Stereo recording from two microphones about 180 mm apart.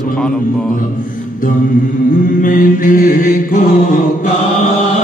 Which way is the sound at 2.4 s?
50° left (ahead or behind).